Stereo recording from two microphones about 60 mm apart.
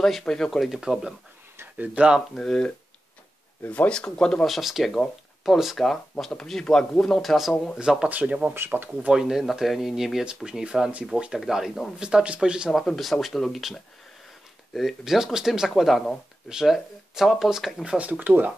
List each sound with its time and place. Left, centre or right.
0.2 s speech: centre
0.5 s speech: centre
2.3 s speech: centre
3.6 s speech: left
4.5 s speech: centre
8.1 s speech: right
8.5 s speech: right
9.1 s speech: centre
11.3 s speech: centre
12.0 s speech: centre
12.7 s speech: centre
15.7 s speech: centre
16.4 s speech: centre
17.8 s speech: centre